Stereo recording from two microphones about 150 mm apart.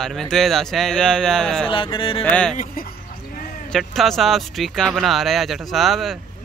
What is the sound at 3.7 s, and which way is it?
Speech, centre (ahead or behind).